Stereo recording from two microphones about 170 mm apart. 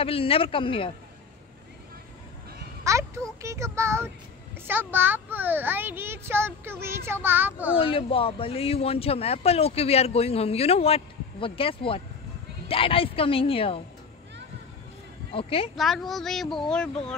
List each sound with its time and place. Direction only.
0.0 s speech: 35° left (ahead or behind)
2.8 s a child's voice: 20° right (ahead or behind)
7.7 s speech: 30° left (ahead or behind)
15.3 s speech: 35° left (ahead or behind)
15.7 s speech: centre (ahead or behind)